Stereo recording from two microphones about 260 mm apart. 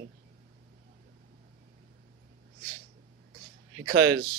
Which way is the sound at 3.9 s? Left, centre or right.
Right.